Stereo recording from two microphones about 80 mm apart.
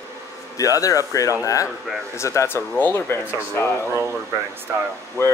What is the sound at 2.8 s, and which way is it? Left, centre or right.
Speech, left.